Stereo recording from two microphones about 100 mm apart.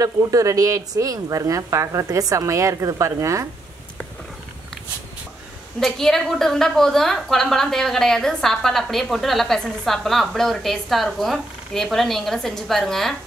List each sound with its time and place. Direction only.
0.0 s speech: 35° right (ahead or behind)
5.8 s a woman's voice: 5° left (ahead or behind)